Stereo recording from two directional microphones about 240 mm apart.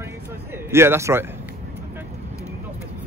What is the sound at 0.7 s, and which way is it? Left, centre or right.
Speech, centre.